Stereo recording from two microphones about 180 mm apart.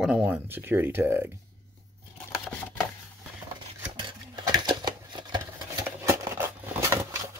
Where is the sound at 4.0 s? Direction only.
25° right (ahead or behind).